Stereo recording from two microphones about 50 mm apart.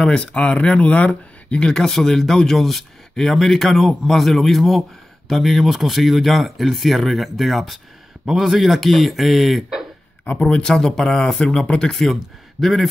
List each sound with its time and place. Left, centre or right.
0.0 s speech: left
1.6 s speech: centre
10.2 s speech: left
10.6 s speech: centre
12.0 s speech: centre